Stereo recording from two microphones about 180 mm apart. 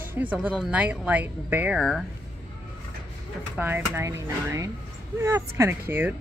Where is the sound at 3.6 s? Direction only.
10° right (ahead or behind).